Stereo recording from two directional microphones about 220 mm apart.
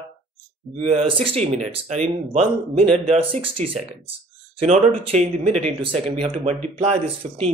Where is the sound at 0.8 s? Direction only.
25° right (ahead or behind).